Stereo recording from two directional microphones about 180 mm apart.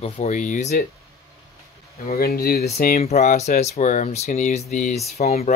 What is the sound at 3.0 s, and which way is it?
Speech, 40° left (ahead or behind).